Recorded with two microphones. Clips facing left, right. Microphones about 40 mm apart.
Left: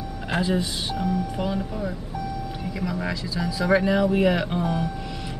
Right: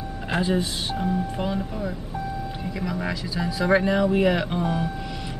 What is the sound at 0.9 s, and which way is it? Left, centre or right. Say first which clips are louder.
Speech: even; right.